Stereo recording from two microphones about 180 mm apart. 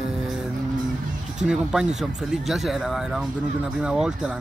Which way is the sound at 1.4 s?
5° right (ahead or behind).